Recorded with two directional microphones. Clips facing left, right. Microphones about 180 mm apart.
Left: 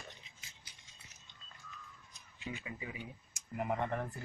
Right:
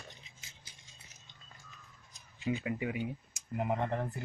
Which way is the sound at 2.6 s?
60° right (ahead or behind).